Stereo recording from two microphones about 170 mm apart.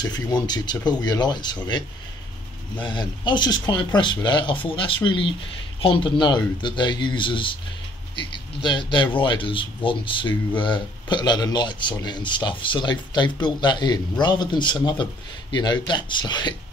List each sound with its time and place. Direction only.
0.0 s speech: 25° left (ahead or behind)